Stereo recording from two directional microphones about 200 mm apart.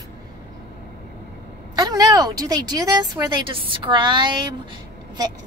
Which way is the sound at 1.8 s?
20° right (ahead or behind).